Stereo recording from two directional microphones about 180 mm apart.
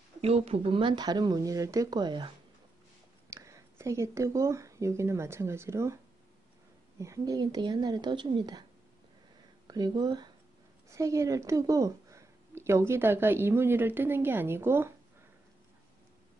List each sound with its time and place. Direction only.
0.2 s speech: 35° right (ahead or behind); by 5.9 s 15° right (ahead or behind)
7.0 s speech: 20° right (ahead or behind)
9.7 s a woman's voice: 25° right (ahead or behind)